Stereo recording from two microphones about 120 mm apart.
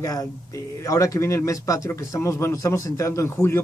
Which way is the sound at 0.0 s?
30° left (ahead or behind).